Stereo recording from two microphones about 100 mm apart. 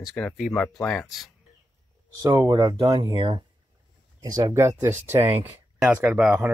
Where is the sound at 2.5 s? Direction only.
55° right (ahead or behind).